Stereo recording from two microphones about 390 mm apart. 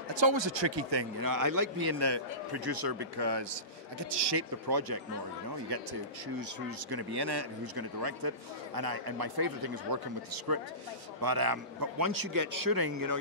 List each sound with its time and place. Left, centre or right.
0.1 s speech: right
1.3 s a man's voice: right
6.9 s a man's voice: right
11.1 s a man's voice: right